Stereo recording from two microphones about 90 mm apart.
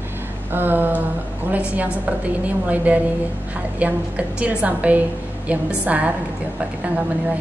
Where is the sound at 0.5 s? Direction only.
20° right (ahead or behind).